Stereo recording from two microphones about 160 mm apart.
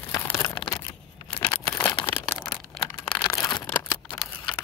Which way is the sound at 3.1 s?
20° left (ahead or behind).